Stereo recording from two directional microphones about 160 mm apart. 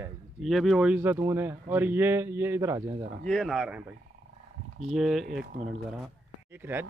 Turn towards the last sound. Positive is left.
turn(degrees=-15)  # may be behind; listen again after turning